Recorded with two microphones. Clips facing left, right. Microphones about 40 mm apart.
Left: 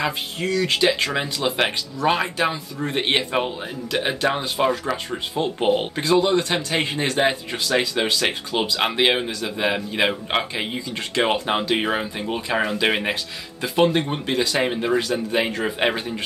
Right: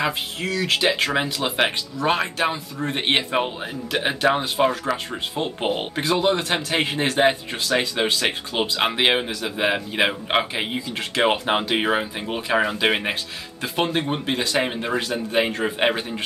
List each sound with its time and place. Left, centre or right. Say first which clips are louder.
0.0 s speech: even; centre